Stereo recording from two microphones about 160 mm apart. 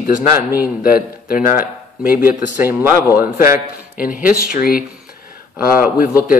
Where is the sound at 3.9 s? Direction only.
60° left (ahead or behind).